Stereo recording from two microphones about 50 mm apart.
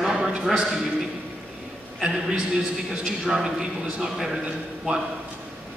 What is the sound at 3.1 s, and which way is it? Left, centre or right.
A man's voice, centre.